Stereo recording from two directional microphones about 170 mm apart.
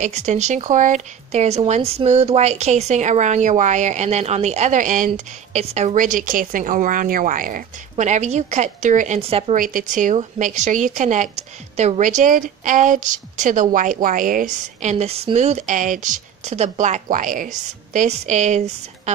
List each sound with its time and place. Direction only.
0.0 s a woman's voice: 45° right (ahead or behind)
9.6 s a woman's voice: 55° right (ahead or behind)